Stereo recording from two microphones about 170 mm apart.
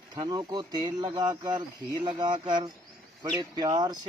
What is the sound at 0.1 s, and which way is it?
Speech, 25° right (ahead or behind).